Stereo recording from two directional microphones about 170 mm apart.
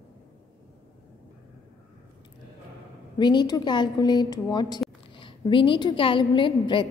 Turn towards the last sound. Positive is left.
turn(degrees=30)  # may be behind; listen again after turning